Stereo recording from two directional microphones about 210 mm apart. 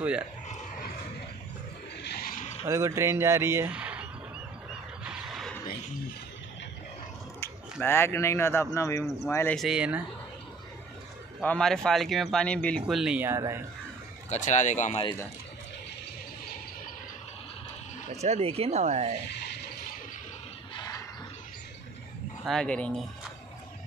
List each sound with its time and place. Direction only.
2.0 s mechanisms: 45° left (ahead or behind)
2.6 s speech: 15° right (ahead or behind)
5.0 s a sound: 5° right (ahead or behind)
7.8 s speech: 10° left (ahead or behind)
9.6 s speech: 5° right (ahead or behind)
11.4 s speech: 5° left (ahead or behind); by 13.6 s 15° right (ahead or behind)
14.3 s speech: 35° left (ahead or behind)
18.2 s speech: 30° right (ahead or behind)
20.7 s a sound: 15° left (ahead or behind)
22.5 s speech: 5° left (ahead or behind)